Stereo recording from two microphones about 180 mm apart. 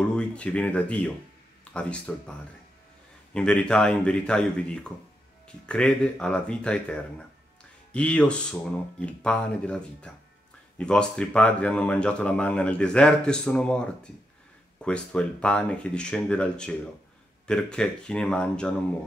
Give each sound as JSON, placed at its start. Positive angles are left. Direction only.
{"t": 0.0, "sound": "speech", "side_deg": 5}
{"t": 3.3, "sound": "speech", "side_deg": 5}